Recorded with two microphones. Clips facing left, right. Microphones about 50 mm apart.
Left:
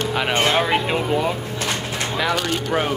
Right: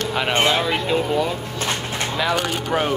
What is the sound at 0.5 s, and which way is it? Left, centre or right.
Speech, centre.